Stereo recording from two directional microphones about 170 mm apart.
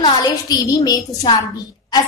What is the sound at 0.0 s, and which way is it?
A woman's voice, 25° left (ahead or behind).